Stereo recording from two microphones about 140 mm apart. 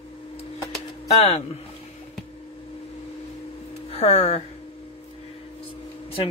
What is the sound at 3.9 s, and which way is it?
Speech, 45° left (ahead or behind).